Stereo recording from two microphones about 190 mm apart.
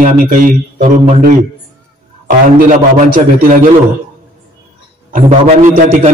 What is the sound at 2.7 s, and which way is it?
A man's voice, 45° right (ahead or behind).